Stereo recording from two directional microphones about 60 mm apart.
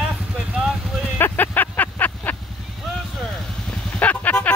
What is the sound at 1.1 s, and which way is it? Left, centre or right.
Vehicle, left.